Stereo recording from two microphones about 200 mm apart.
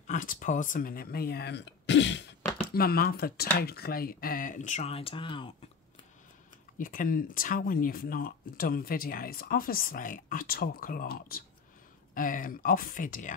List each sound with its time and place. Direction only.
0.0 s speech: 40° left (ahead or behind); by 2.3 s 60° left (ahead or behind)
2.7 s speech: 50° left (ahead or behind); by 5.5 s 25° left (ahead or behind)
6.8 s speech: 40° left (ahead or behind)